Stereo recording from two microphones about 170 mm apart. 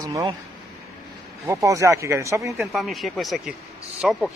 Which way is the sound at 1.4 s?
20° right (ahead or behind).